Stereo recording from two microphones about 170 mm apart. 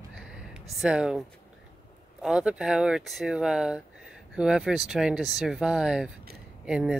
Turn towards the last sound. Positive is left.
turn(degrees=-5)  # may be behind; listen again after turning